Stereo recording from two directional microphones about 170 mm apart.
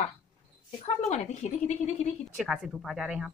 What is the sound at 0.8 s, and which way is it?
Speech, 40° left (ahead or behind).